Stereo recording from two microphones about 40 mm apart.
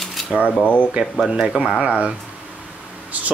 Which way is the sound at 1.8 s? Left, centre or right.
Right.